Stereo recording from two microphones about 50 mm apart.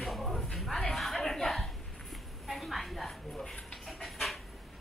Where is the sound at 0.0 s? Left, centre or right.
Centre.